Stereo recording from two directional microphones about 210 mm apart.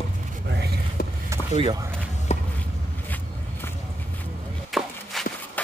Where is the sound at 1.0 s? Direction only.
45° left (ahead or behind).